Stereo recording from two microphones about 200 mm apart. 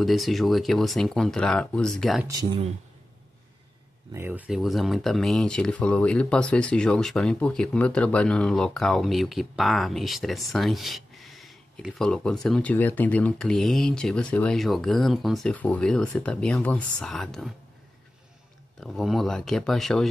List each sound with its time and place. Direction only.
0.0 s speech: centre (ahead or behind)
2.2 s speech: 20° right (ahead or behind)
4.1 s speech: 10° right (ahead or behind)
18.8 s speech: centre (ahead or behind)